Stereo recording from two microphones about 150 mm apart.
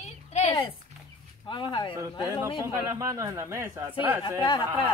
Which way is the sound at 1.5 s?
35° left (ahead or behind).